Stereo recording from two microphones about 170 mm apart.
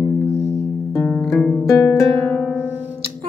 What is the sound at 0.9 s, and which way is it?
Music, centre (ahead or behind).